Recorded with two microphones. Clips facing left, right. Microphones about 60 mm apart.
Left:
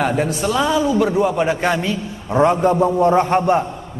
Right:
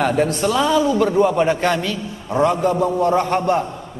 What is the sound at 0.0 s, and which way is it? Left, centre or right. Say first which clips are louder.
A man's voice: right 1 dB; centre.